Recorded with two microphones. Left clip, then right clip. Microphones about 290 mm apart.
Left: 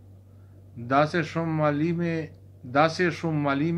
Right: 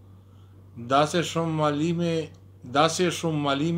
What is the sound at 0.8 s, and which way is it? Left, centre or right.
A man's voice, right.